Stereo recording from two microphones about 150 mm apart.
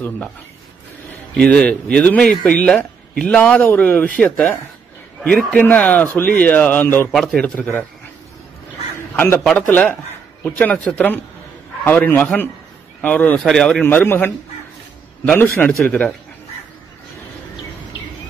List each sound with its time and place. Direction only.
1.3 s speech: 5° left (ahead or behind)
7.1 s speech: centre (ahead or behind)
8.9 s a sound: 15° left (ahead or behind)
9.4 s speech: 5° left (ahead or behind)
15.9 s speech: 5° left (ahead or behind)